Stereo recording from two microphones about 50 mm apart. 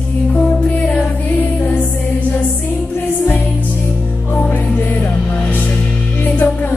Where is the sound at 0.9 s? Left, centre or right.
Left.